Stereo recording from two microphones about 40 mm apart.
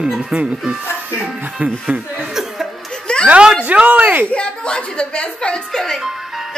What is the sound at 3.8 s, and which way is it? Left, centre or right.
Speech, right.